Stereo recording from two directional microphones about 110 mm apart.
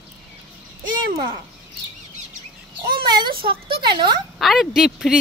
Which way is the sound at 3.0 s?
45° right (ahead or behind).